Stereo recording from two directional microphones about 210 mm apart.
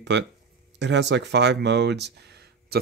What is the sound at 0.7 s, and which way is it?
Speech, 55° right (ahead or behind).